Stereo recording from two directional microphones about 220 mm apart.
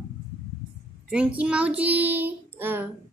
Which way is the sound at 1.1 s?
5° right (ahead or behind).